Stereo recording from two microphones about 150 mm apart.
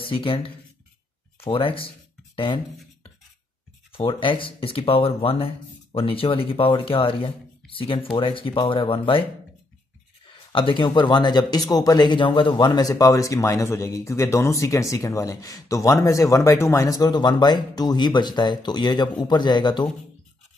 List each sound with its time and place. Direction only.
0.0 s speech: 35° left (ahead or behind)
10.5 s speech: 35° left (ahead or behind)